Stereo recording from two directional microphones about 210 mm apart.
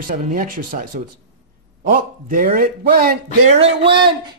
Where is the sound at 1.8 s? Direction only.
40° right (ahead or behind).